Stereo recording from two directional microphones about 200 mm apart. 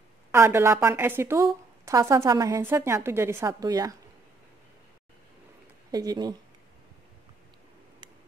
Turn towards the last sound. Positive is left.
turn(degrees=-20)  # may be behind; listen again after turning